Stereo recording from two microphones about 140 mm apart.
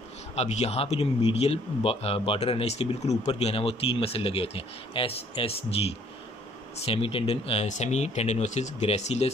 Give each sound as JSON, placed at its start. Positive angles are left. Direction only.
{"t": 0.4, "sound": "a man's voice", "side_deg": 50}
{"t": 6.8, "sound": "a man's voice", "side_deg": 40}